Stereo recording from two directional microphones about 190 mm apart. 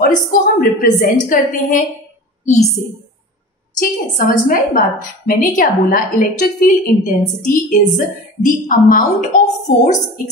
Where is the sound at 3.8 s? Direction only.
45° left (ahead or behind).